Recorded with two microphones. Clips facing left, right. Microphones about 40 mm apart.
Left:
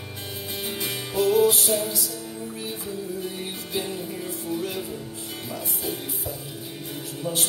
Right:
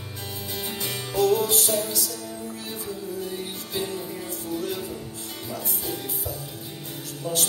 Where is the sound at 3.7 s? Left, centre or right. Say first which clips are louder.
Even; centre.